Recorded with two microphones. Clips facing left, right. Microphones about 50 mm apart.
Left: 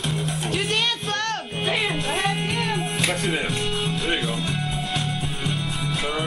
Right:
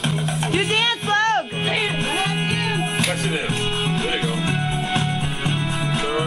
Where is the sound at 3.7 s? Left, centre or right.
Right.